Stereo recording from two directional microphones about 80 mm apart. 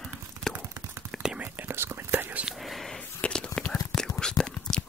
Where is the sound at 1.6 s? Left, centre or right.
Right.